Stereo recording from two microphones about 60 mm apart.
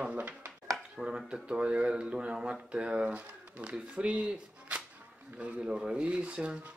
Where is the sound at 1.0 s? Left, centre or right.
Centre.